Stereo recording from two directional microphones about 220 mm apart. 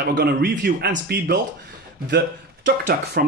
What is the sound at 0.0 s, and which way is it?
Speech, 50° right (ahead or behind).